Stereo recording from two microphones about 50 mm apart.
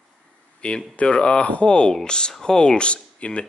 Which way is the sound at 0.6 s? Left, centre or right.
Left.